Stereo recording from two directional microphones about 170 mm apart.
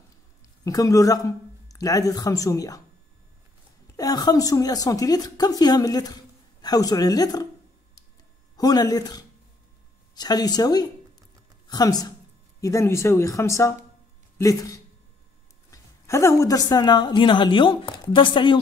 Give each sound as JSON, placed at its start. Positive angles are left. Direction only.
{"t": 0.7, "sound": "a woman's voice", "side_deg": 20}
{"t": 3.8, "sound": "a woman's voice", "side_deg": 20}
{"t": 8.5, "sound": "a woman's voice", "side_deg": 25}